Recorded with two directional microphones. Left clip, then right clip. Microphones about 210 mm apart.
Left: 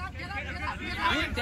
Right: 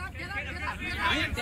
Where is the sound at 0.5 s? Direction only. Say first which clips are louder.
Even; 35° left (ahead or behind).